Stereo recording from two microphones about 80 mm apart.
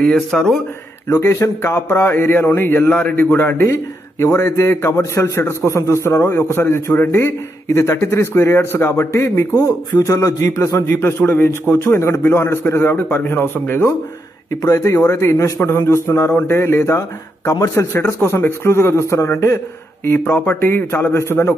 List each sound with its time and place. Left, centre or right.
0.0 s speech: centre
1.0 s a man's voice: left
15.0 s speech: left